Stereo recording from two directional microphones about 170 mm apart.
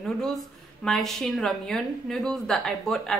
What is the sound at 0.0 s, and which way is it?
A woman's voice, centre (ahead or behind).